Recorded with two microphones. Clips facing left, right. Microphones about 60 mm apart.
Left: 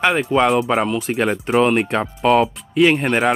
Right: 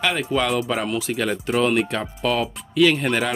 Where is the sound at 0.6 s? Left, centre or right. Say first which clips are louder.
Left 5 dB; left.